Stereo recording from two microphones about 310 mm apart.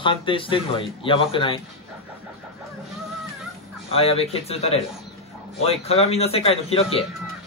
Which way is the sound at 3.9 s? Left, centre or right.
Centre.